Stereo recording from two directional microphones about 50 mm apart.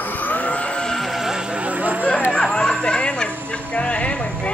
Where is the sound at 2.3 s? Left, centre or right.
Centre.